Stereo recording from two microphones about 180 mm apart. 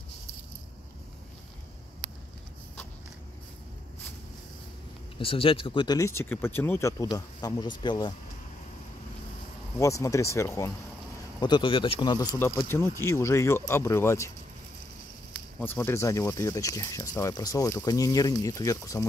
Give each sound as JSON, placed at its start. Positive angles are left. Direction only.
{"t": 5.1, "sound": "speech", "side_deg": 30}
{"t": 9.8, "sound": "speech", "side_deg": 15}
{"t": 12.6, "sound": "speech", "side_deg": 10}
{"t": 15.6, "sound": "speech", "side_deg": 10}